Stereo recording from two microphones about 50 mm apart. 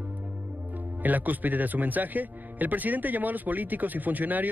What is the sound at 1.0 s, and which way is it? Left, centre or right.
A man's voice, right.